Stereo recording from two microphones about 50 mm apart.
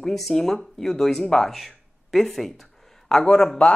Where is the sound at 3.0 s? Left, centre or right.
Centre.